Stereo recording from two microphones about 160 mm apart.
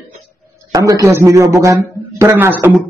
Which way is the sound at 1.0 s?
20° right (ahead or behind).